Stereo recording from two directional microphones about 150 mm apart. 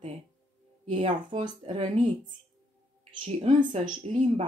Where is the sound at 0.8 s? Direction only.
45° right (ahead or behind).